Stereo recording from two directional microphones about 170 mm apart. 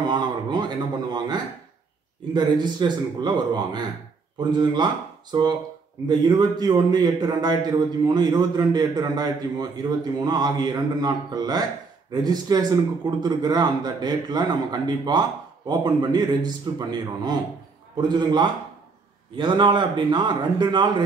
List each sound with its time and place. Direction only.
0.0 s a man's voice: 25° right (ahead or behind)
6.0 s a man's voice: 25° right (ahead or behind)